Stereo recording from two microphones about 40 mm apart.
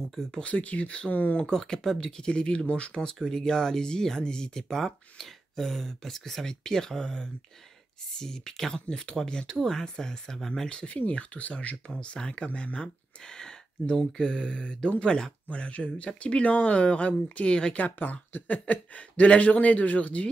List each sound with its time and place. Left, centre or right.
0.1 s speech: centre
0.4 s speech: left
1.1 s speech: left
1.4 s speech: centre
3.2 s speech: centre
10.7 s speech: left
11.0 s speech: left
11.5 s speech: left
13.3 s speech: centre
15.4 s speech: left
17.9 s speech: left